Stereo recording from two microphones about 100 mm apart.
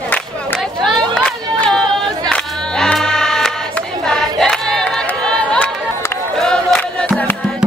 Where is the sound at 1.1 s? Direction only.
10° left (ahead or behind).